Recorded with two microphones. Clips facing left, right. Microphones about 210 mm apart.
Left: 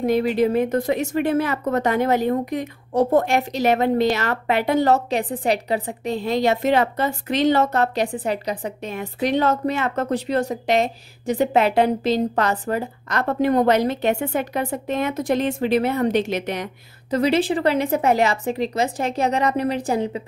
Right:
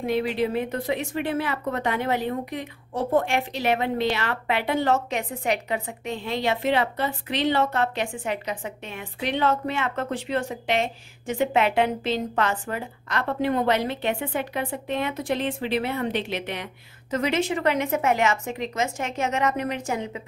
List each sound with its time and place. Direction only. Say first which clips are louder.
0.0 s speech: left 6 dB; 40° left (ahead or behind)